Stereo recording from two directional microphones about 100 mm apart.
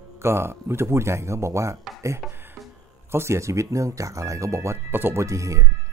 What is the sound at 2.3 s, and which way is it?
Music, 20° right (ahead or behind).